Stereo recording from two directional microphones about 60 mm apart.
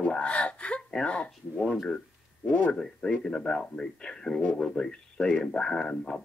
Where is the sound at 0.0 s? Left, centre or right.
Centre.